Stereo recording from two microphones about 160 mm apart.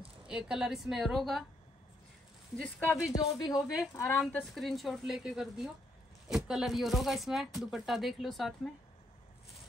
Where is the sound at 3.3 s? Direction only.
25° left (ahead or behind).